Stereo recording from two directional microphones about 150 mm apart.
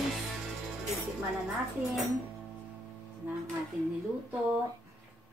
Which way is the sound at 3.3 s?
10° right (ahead or behind).